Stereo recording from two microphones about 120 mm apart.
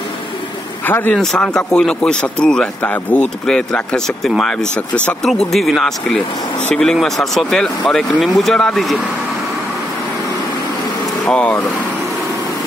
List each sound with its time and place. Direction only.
0.8 s speech: 15° left (ahead or behind)
1.1 s speech: 5° left (ahead or behind)
11.2 s speech: 10° left (ahead or behind)